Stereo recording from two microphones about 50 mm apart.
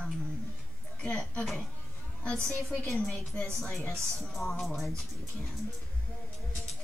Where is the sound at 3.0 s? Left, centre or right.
Centre.